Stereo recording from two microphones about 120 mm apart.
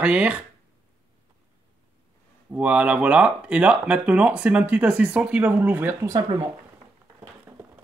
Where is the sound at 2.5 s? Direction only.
10° right (ahead or behind).